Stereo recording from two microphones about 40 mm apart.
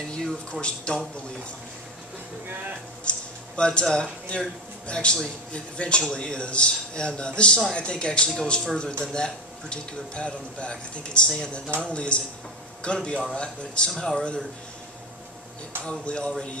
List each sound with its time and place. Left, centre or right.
0.2 s speech: left
3.1 s a man's voice: left
15.8 s speech: left